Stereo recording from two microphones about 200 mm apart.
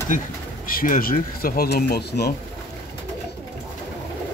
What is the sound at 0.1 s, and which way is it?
Speech, 40° left (ahead or behind).